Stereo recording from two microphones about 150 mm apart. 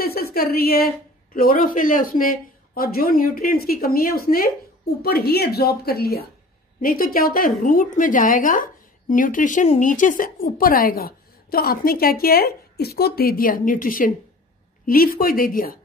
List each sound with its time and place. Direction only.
0.0 s a woman's voice: 90° left
6.8 s a woman's voice: 70° left (ahead or behind)